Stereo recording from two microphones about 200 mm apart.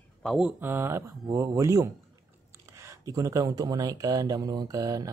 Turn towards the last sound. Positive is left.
turn(degrees=-20)  # may be behind; listen again after turning